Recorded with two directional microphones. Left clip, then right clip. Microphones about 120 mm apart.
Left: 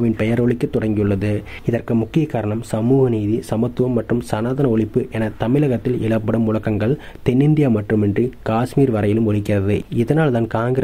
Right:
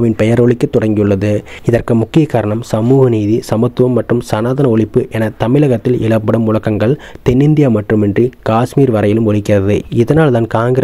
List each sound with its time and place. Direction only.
0.0 s speech: 45° right (ahead or behind)